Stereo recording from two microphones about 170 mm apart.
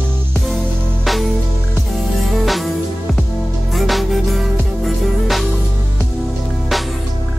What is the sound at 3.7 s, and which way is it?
Music, centre (ahead or behind).